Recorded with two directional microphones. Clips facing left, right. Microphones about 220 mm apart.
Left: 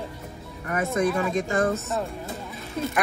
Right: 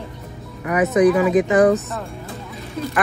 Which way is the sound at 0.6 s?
85° right.